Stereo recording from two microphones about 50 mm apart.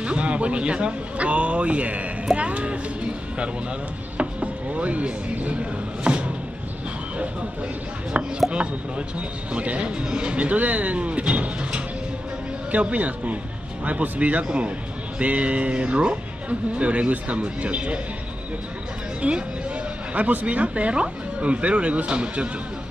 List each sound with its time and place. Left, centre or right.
0.0 s speech: right
8.2 s speech: right
19.2 s a woman's voice: right